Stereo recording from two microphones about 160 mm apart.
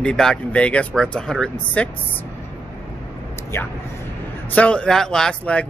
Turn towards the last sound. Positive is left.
turn(degrees=5)  # may be behind; listen again after turning